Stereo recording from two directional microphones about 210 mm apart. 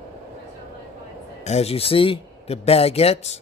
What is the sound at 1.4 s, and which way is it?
Speech, 30° left (ahead or behind).